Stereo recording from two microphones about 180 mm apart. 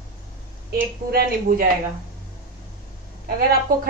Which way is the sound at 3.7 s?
55° right (ahead or behind).